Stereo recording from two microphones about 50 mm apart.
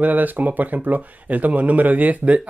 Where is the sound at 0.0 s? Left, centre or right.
Right.